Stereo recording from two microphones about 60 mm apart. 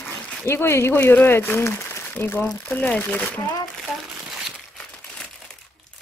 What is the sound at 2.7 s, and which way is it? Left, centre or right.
Speech, left.